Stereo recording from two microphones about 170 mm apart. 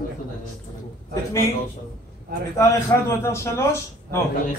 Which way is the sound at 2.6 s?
15° left (ahead or behind).